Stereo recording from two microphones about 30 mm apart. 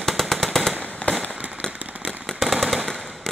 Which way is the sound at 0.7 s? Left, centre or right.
Left.